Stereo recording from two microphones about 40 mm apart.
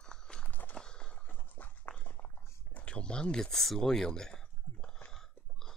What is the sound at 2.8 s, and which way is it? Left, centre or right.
Speech, left.